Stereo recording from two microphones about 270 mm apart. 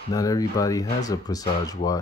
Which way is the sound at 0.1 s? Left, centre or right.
Centre.